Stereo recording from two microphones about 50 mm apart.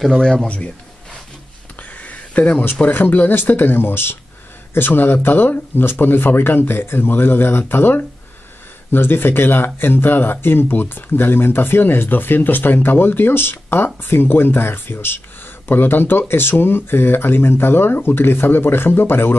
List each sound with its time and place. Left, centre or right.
0.2 s a man's voice: centre
1.8 s a sound: left
2.9 s speech: left